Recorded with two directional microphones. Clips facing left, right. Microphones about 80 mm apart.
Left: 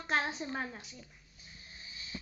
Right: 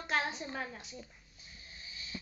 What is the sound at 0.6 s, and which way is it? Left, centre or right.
Speech, centre.